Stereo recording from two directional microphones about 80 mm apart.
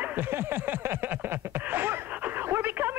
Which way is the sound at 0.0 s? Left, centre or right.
Right.